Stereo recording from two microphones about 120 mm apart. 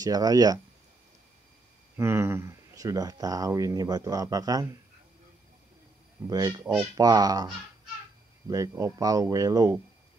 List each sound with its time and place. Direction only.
0.0 s speech: 30° right (ahead or behind)
2.0 s speech: 20° right (ahead or behind)
6.2 s speech: 30° right (ahead or behind)
8.5 s speech: 25° right (ahead or behind)